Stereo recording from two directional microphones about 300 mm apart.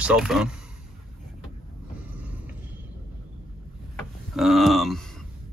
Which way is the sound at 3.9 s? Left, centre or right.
Centre.